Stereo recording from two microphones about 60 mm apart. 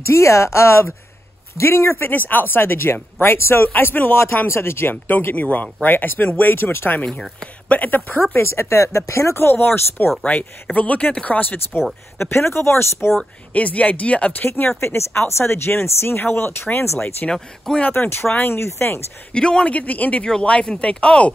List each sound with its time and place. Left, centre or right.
0.0 s speech: left
7.6 s speech: left
8.4 s speech: left
10.2 s speech: left
12.2 s speech: left
13.5 s speech: left
14.8 s speech: left
17.3 s speech: centre
18.3 s speech: left
19.3 s speech: centre